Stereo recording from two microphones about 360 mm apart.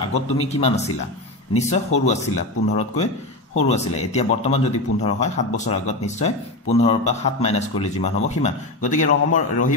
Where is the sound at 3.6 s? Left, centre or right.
Centre.